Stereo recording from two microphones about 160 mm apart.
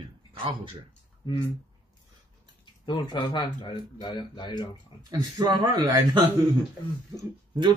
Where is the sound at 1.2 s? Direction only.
30° left (ahead or behind).